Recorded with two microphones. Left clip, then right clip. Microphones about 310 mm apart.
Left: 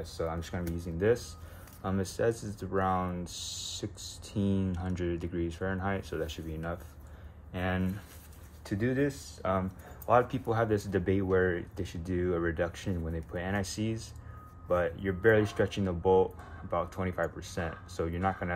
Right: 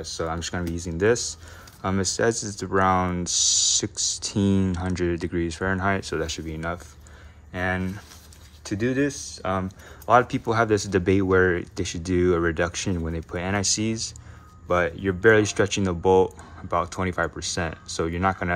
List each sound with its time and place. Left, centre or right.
0.0 s speech: right
7.5 s speech: centre
8.6 s speech: right